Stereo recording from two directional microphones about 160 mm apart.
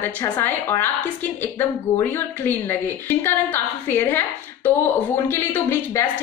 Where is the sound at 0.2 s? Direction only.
15° left (ahead or behind).